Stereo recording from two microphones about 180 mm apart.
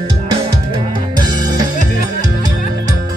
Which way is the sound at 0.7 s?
25° right (ahead or behind).